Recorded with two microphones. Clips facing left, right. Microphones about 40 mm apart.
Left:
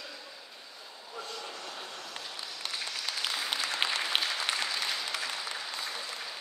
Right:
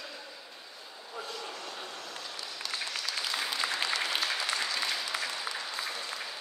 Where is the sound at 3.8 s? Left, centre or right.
Left.